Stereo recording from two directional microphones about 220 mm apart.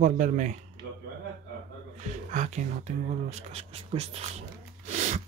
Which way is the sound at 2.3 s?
35° right (ahead or behind).